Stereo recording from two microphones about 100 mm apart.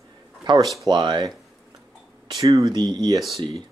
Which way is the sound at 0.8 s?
45° right (ahead or behind).